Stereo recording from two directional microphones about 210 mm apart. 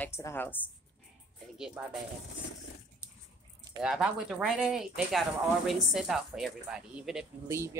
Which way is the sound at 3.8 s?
5° right (ahead or behind).